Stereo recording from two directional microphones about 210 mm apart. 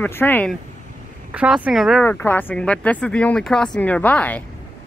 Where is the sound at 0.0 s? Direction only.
10° left (ahead or behind).